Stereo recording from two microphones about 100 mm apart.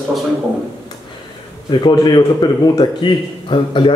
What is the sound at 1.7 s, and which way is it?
A man's voice, 45° left (ahead or behind).